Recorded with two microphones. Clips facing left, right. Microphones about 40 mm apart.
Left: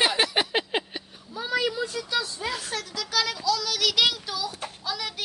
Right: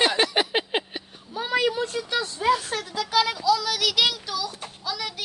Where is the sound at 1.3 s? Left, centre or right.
Right.